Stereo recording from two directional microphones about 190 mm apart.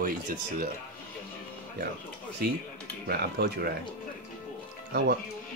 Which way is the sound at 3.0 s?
55° right (ahead or behind).